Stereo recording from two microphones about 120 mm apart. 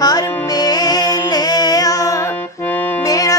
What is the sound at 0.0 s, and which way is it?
Music, 35° left (ahead or behind).